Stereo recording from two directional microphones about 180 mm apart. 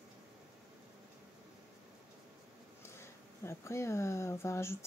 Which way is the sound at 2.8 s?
15° left (ahead or behind).